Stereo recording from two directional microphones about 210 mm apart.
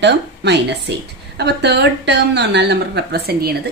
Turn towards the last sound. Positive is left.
turn(degrees=-50)  # may be behind; listen again after turning